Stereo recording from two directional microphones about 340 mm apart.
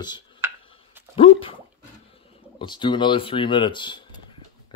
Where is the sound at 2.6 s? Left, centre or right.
Centre.